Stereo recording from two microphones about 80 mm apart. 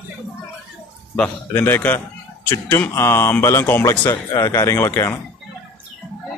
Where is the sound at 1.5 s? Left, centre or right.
Left.